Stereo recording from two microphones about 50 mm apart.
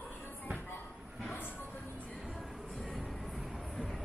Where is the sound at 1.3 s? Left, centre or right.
Left.